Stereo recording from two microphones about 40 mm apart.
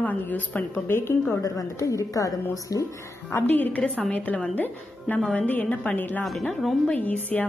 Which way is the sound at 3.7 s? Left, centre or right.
Left.